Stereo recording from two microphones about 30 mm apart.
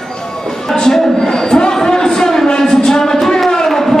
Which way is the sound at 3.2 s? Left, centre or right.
Centre.